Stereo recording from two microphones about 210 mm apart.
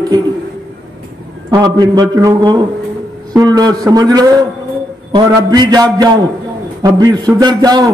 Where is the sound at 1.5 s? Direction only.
20° right (ahead or behind).